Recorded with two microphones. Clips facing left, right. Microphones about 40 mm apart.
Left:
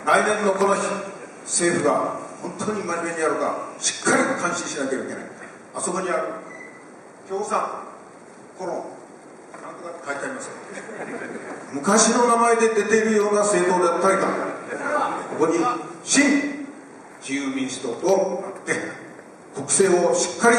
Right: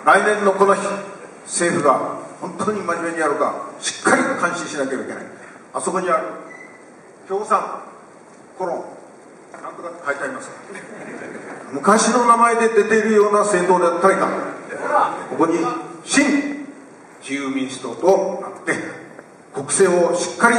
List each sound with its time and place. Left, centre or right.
0.1 s a man's voice: centre
7.2 s speech: centre
7.5 s a man's voice: centre
18.7 s a sound: centre
19.5 s a man's voice: centre
20.4 s a man's voice: centre